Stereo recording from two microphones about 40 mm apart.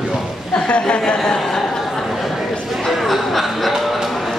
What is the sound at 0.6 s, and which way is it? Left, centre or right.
Speech, left.